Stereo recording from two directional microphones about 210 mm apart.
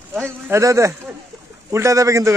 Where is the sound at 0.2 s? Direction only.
15° right (ahead or behind).